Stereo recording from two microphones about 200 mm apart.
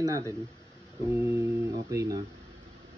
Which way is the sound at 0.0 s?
15° right (ahead or behind).